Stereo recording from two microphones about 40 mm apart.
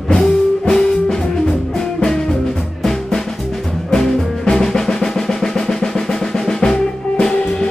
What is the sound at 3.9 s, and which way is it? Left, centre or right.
Music, centre.